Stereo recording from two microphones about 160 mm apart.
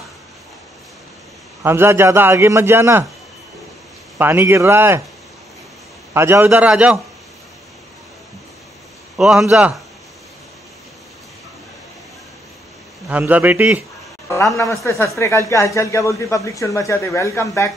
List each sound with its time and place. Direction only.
1.6 s a man's voice: 15° right (ahead or behind)
4.2 s a man's voice: 15° right (ahead or behind)
6.1 s a man's voice: 15° right (ahead or behind)
9.1 s a man's voice: 5° right (ahead or behind)
13.1 s a man's voice: 10° right (ahead or behind)
14.9 s speech: 15° left (ahead or behind)